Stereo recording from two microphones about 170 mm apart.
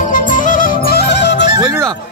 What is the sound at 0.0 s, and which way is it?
Music, 50° left (ahead or behind).